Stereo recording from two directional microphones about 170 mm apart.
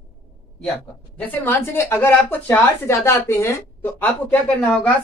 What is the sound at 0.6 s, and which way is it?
Speech, 10° left (ahead or behind).